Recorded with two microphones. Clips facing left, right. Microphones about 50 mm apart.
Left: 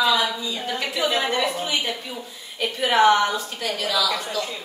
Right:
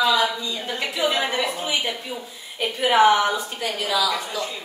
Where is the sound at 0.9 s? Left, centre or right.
Centre.